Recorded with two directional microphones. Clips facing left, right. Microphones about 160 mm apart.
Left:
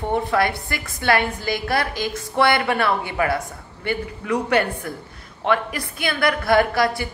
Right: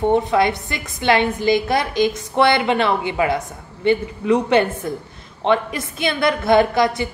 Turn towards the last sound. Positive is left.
turn(degrees=-20)  # may be behind; listen again after turning